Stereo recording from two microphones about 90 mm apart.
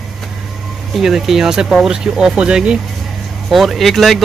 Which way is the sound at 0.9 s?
5° right (ahead or behind).